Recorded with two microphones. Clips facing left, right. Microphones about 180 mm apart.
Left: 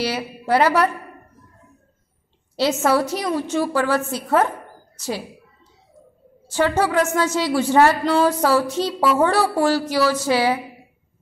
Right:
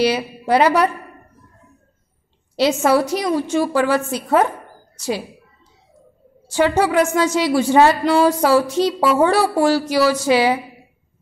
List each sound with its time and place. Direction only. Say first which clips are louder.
0.0 s a woman's voice: right 6 dB; 15° right (ahead or behind)
2.5 s a woman's voice: right 3 dB; 15° right (ahead or behind)
6.5 s a woman's voice: right 3 dB; 15° right (ahead or behind)